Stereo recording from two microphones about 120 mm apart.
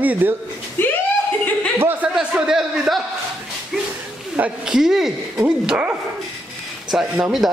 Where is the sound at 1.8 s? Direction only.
15° right (ahead or behind).